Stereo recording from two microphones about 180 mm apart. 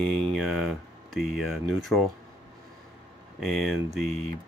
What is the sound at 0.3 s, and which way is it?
Speech, centre (ahead or behind).